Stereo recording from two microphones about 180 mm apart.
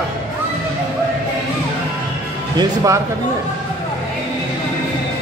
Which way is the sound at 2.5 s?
20° right (ahead or behind).